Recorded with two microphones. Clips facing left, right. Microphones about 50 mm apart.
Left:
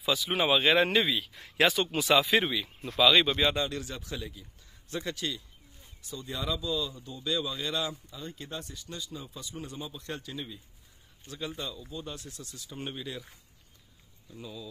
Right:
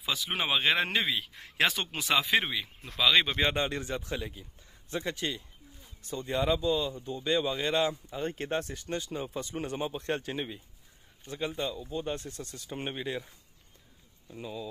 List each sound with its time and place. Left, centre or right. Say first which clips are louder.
0.0 s speech: left 4 dB; right
3.3 s a man's voice: left 1 dB; right
6.0 s a man's voice: right 6 dB; right
8.2 s speech: right 10 dB; right
11.2 s a man's voice: right 4 dB; right
12.8 s speech: right 3 dB; right